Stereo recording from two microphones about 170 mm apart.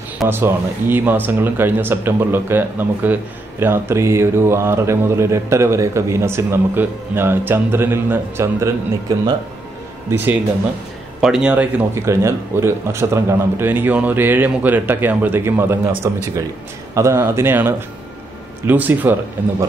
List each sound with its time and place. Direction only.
0.3 s speech: 15° right (ahead or behind)
10.1 s speech: 10° right (ahead or behind)